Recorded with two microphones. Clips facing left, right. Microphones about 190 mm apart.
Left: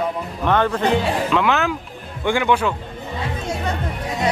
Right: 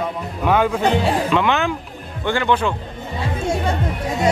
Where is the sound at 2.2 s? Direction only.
15° left (ahead or behind).